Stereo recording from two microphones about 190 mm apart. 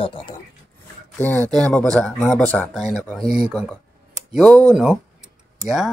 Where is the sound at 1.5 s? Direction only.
5° left (ahead or behind).